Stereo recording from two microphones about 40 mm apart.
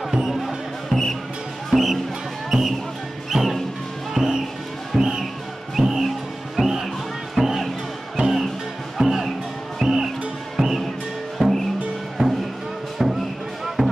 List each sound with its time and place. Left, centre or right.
0.1 s music: centre
0.4 s music: centre
2.5 s basketball bounce: centre
3.3 s music: centre
5.8 s music: centre
13.0 s music: centre